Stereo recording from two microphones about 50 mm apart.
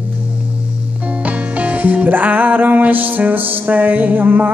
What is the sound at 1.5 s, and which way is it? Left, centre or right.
Music, right.